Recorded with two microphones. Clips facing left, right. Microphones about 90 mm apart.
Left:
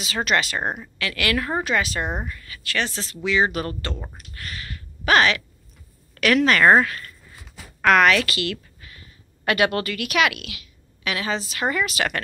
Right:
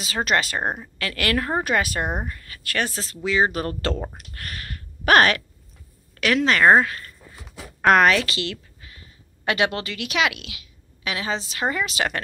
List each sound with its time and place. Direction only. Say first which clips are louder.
0.0 s speech: even; 40° right (ahead or behind)
1.6 s speech: right 1 dB; 50° right (ahead or behind)
3.3 s speech: even; 35° right (ahead or behind)
6.1 s a woman's voice: left 2 dB; 20° right (ahead or behind)
7.8 s a woman's voice: even; 35° right (ahead or behind)